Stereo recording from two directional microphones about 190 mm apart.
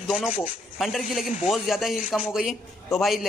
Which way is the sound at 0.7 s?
Centre (ahead or behind).